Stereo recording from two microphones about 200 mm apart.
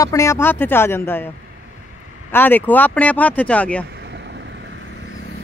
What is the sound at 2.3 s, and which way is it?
Speech, 10° left (ahead or behind).